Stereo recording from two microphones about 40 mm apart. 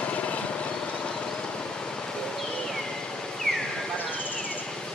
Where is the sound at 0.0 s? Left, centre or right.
Left.